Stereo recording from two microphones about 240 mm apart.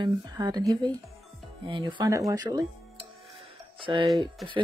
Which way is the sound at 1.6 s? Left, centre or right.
Centre.